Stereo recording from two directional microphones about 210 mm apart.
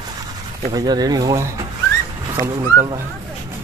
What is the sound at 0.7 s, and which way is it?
Speech, 20° right (ahead or behind).